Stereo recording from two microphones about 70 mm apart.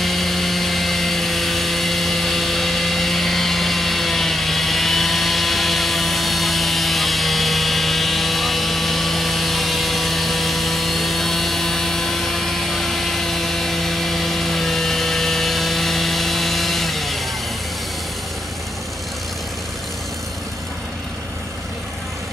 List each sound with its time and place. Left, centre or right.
0.0 s helicopter: centre